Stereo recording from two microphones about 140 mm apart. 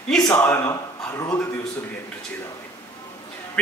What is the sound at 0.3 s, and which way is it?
A man's voice, 15° left (ahead or behind).